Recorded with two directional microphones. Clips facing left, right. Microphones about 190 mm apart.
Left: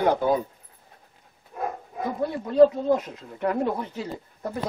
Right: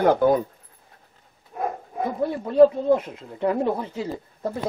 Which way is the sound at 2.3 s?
25° right (ahead or behind).